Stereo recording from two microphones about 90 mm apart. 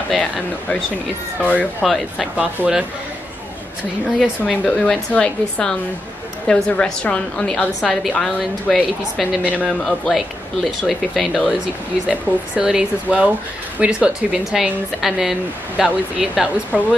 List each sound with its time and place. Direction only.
0.1 s a woman's voice: 10° left (ahead or behind)
1.8 s a man's voice: centre (ahead or behind)
2.3 s speech: 10° right (ahead or behind)
4.6 s a woman's voice: 10° left (ahead or behind); by 16.4 s 5° right (ahead or behind)
16.7 s speech: 15° right (ahead or behind)